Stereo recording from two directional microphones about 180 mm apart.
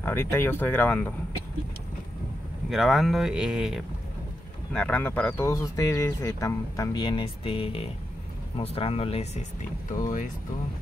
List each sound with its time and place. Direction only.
0.0 s speech: 10° left (ahead or behind)
2.7 s speech: centre (ahead or behind); by 9.4 s 35° left (ahead or behind)